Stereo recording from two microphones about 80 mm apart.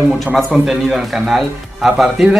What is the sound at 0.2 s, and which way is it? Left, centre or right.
Speech, centre.